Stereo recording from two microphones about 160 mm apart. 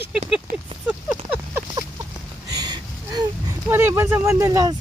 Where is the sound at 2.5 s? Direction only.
25° right (ahead or behind).